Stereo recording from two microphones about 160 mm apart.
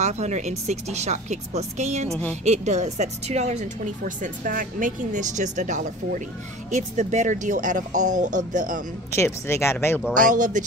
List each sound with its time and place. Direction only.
0.0 s speech: 45° right (ahead or behind)
2.0 s speech: 10° left (ahead or behind)
2.4 s speech: 45° right (ahead or behind)
9.1 s speech: 15° left (ahead or behind)
10.1 s speech: 55° right (ahead or behind)